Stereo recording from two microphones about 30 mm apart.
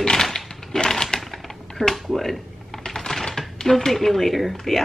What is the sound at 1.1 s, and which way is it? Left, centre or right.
Typewriter, left.